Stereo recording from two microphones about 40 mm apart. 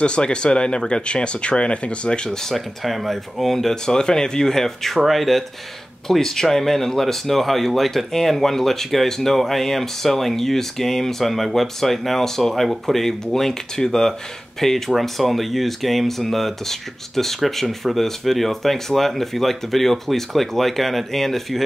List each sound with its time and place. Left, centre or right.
0.0 s speech: left
2.4 s speech: centre
6.0 s speech: centre
14.9 s speech: centre